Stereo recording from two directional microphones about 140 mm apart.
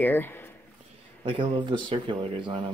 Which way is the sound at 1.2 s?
35° right (ahead or behind).